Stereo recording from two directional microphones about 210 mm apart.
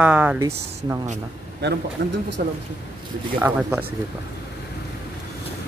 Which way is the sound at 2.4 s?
45° right (ahead or behind).